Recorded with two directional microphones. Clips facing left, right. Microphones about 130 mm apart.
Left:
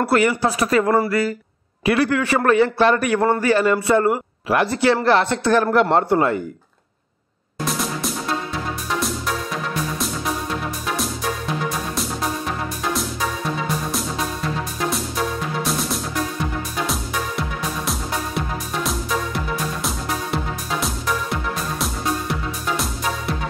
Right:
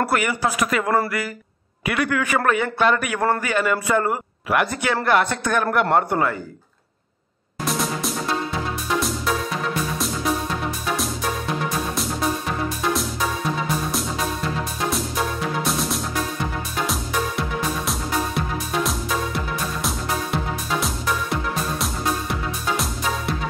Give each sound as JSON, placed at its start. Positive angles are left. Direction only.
{"t": 0.1, "sound": "a man's voice", "side_deg": 30}
{"t": 7.6, "sound": "music", "side_deg": 0}
{"t": 16.8, "sound": "music", "side_deg": 0}